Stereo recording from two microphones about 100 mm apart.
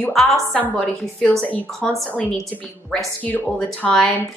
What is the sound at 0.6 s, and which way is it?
A woman's voice, 15° left (ahead or behind).